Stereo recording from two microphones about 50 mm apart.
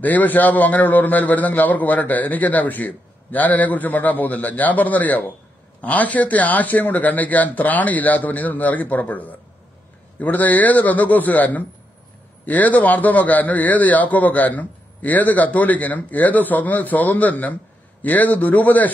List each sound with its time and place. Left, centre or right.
0.0 s a man's voice: left